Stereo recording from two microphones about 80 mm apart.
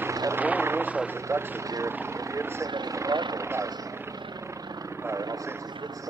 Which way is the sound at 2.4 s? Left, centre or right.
Right.